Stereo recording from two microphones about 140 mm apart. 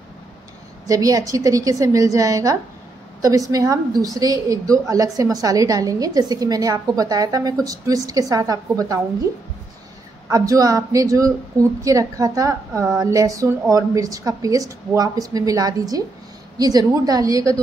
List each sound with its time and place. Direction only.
0.8 s a woman's voice: 25° right (ahead or behind)
10.3 s a woman's voice: 25° right (ahead or behind)